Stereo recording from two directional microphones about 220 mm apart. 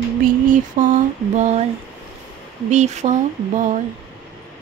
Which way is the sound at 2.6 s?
30° right (ahead or behind).